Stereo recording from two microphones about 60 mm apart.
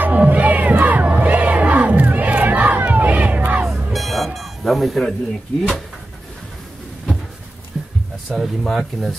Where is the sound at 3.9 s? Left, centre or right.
Centre.